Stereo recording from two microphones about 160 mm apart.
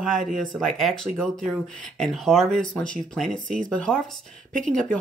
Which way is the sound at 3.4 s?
55° right (ahead or behind).